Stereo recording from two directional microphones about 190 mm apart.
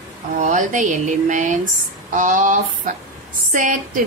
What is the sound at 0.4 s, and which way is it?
A woman's voice, 40° right (ahead or behind).